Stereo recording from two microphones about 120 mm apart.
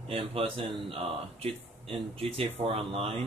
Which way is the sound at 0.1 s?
50° right (ahead or behind).